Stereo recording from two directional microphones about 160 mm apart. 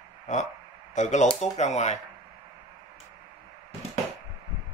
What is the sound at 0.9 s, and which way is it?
Speech, 50° left (ahead or behind).